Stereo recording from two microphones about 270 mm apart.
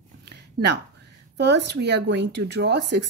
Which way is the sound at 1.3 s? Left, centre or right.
Right.